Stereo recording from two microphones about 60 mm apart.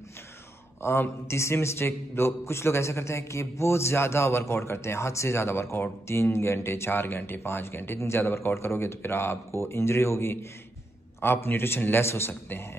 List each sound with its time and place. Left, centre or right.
0.8 s a man's voice: left